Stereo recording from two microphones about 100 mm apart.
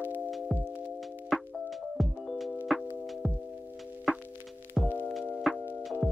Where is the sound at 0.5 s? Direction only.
15° right (ahead or behind).